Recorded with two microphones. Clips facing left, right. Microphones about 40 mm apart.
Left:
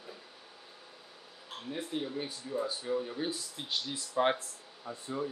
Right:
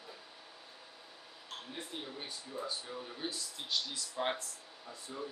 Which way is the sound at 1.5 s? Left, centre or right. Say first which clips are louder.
Left 7 dB; centre.